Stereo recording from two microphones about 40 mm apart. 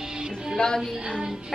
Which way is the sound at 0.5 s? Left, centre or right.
Centre.